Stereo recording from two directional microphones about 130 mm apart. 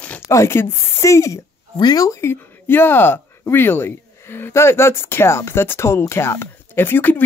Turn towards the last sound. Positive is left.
turn(degrees=15)  # may be behind; listen again after turning